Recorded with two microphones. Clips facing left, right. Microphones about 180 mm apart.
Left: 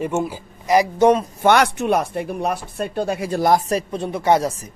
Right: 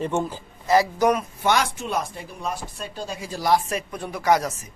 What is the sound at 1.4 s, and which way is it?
A man's voice, 65° left (ahead or behind).